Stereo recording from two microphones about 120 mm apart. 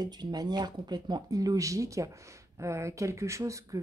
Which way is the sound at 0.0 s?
35° right (ahead or behind).